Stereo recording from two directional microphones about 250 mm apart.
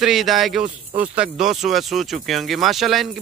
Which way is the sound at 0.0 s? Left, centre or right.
Centre.